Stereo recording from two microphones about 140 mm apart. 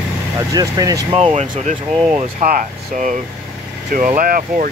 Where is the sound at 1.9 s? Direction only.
5° right (ahead or behind).